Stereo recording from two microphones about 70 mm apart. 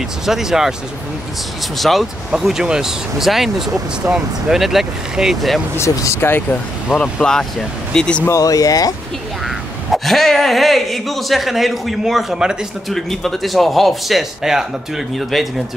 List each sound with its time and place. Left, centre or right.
0.2 s speech: centre
1.8 s speech: centre
5.8 s speech: left
6.2 s speech: left
7.0 s speech: centre
8.4 s speech: left
9.9 s speech: centre
12.9 s speech: centre